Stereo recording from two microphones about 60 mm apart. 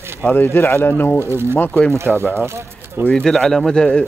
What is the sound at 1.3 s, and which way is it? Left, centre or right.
Speech, right.